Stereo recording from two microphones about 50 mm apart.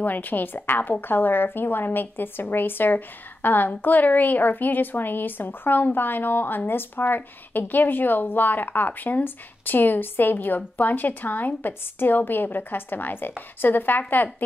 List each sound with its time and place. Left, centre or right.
0.0 s a woman's voice: left